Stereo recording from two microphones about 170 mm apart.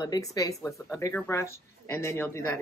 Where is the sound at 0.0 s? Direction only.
20° left (ahead or behind).